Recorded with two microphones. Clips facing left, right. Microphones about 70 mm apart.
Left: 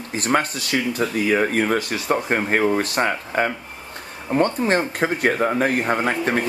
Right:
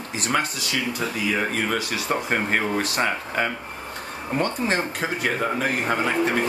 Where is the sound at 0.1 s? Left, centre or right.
Left.